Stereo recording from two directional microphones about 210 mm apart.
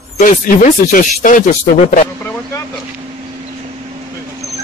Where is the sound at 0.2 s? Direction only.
40° left (ahead or behind).